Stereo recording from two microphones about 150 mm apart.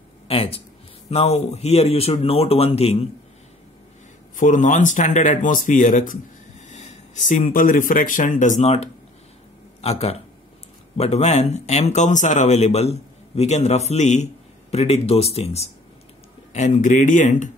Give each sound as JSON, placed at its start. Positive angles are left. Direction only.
{"t": 0.3, "sound": "speech", "side_deg": 40}
{"t": 4.4, "sound": "a man's voice", "side_deg": 55}
{"t": 16.5, "sound": "speech", "side_deg": 55}